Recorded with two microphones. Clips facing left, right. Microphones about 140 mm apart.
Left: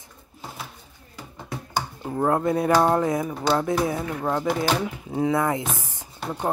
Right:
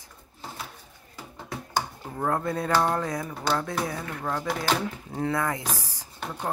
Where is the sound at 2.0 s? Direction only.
25° left (ahead or behind).